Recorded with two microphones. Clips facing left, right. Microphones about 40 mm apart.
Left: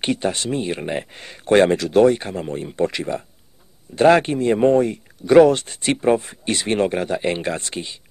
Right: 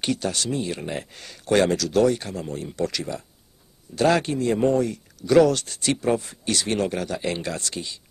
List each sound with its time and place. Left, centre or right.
0.0 s speech: left